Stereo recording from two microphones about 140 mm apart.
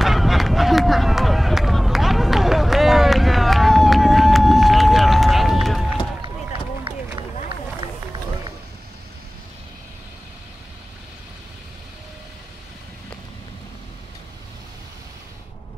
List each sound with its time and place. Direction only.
0.0 s run: centre (ahead or behind)
6.9 s run: 40° right (ahead or behind)